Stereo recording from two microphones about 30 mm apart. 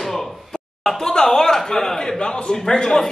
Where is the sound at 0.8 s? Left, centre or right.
Centre.